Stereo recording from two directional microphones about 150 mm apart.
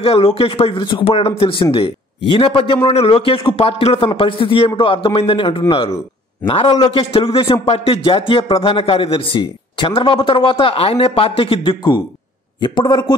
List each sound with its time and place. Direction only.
0.0 s a man's voice: 40° left (ahead or behind)